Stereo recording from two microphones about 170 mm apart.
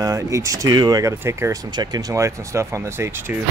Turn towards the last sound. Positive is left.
turn(degrees=-15)  # may be behind; listen again after turning